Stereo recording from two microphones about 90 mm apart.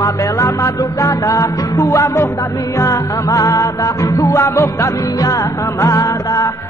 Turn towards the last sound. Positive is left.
turn(degrees=40)  # may be behind; listen again after turning